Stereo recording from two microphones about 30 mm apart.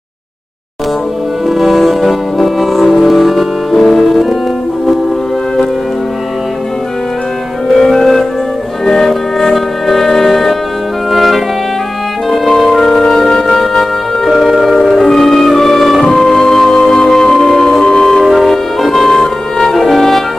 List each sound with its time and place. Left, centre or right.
1.5 s music: centre
7.6 s music: centre
12.4 s music: centre
18.3 s music: centre